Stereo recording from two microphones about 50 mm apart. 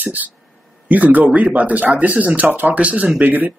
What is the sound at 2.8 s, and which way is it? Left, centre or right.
Speech, right.